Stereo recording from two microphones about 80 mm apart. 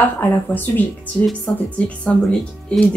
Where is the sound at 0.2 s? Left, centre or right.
Left.